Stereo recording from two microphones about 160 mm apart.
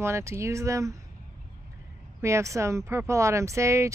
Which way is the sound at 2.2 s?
20° right (ahead or behind).